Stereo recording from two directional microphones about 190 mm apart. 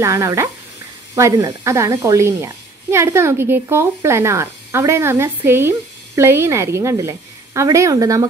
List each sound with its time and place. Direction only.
0.0 s speech: 15° right (ahead or behind)